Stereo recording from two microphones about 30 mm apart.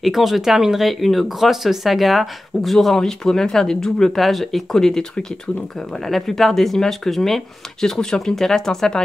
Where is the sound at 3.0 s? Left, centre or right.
Centre.